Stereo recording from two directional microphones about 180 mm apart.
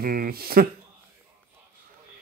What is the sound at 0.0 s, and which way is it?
Speech, 55° right (ahead or behind).